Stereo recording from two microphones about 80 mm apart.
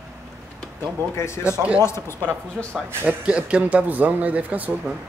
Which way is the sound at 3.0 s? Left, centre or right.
Centre.